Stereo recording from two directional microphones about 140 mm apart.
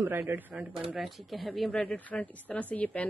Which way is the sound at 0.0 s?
15° right (ahead or behind).